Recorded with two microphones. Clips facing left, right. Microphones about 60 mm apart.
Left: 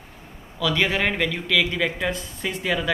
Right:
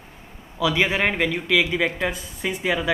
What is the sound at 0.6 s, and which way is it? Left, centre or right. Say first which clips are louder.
A man's voice: right 1 dB; centre.